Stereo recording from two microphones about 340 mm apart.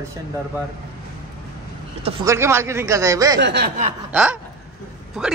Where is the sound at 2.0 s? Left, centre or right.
Centre.